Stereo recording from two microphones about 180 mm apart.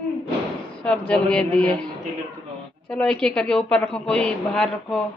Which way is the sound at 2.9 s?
5° left (ahead or behind).